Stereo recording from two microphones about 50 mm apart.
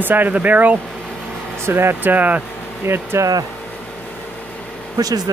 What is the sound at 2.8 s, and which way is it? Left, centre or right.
Speech, right.